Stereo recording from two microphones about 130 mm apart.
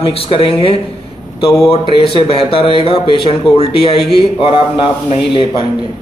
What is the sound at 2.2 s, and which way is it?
Speech, 45° left (ahead or behind).